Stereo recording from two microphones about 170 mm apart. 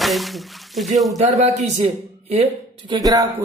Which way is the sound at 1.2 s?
40° right (ahead or behind).